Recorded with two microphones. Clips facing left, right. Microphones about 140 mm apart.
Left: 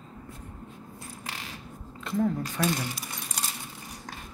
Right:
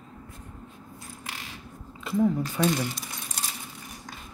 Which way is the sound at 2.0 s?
5° right (ahead or behind).